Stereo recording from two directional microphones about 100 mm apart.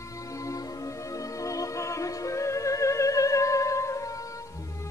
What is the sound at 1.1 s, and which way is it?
Music, 35° left (ahead or behind).